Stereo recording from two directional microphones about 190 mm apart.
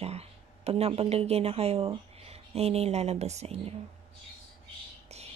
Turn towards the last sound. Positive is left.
turn(degrees=-35)  # may be behind; listen again after turning